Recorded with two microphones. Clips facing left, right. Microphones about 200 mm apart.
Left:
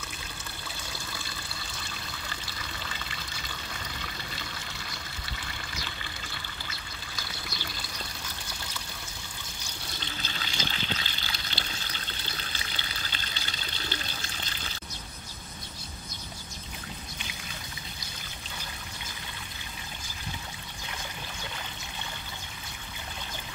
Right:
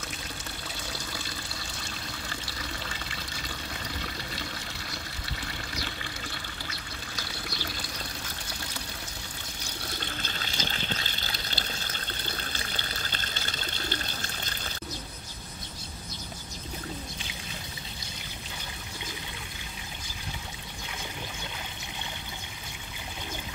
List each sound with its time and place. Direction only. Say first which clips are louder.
9.9 s water: even; 50° right (ahead or behind)